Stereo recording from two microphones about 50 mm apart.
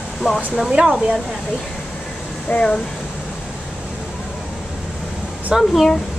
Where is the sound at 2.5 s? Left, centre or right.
Left.